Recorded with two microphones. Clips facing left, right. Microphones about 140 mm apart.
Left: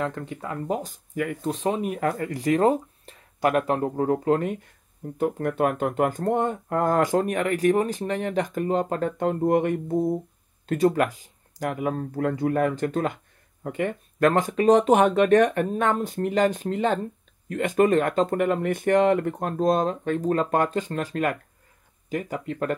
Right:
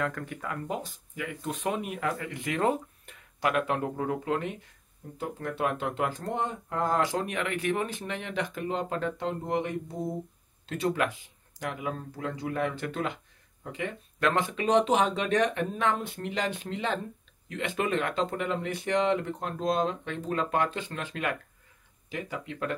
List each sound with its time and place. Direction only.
0.0 s speech: 25° left (ahead or behind)
0.7 s speech: 45° left (ahead or behind)
5.1 s speech: 55° left (ahead or behind)
13.7 s speech: 55° left (ahead or behind)